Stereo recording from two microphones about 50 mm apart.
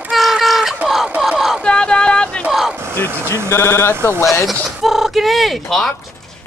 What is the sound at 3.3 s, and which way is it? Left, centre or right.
Speech, left.